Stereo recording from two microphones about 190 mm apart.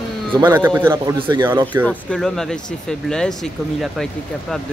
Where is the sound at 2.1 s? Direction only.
Centre (ahead or behind).